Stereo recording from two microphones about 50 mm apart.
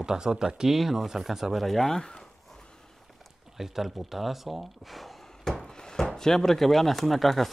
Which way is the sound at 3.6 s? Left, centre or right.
Centre.